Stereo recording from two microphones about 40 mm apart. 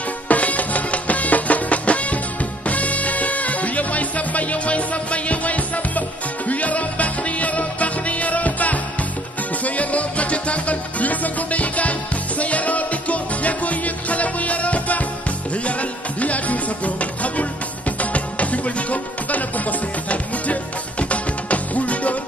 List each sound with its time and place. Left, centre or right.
0.3 s music: left
21.0 s music: left